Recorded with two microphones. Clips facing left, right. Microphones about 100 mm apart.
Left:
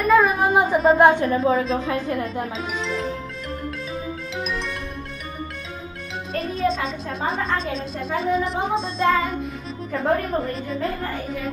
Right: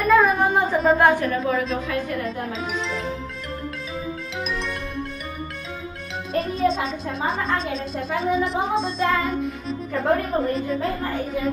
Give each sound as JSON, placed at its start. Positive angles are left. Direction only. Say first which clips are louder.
{"t": 0.0, "sound": "music", "louder": "even", "side_deg": 0}
{"t": 0.9, "sound": "a woman's voice", "louder": "left 3 dB", "side_deg": 20}
{"t": 2.5, "sound": "speech", "louder": "even", "side_deg": 0}
{"t": 6.4, "sound": "music", "louder": "even", "side_deg": 0}
{"t": 7.2, "sound": "speech", "louder": "even", "side_deg": 0}